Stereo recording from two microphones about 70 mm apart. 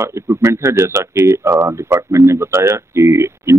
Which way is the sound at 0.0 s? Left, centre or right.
Right.